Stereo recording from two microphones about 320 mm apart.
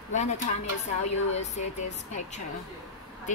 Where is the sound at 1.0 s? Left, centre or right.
Left.